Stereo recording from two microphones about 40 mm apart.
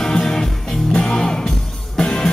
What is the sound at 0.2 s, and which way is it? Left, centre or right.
Music, centre.